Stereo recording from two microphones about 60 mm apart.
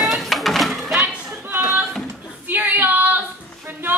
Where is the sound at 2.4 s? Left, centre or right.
Right.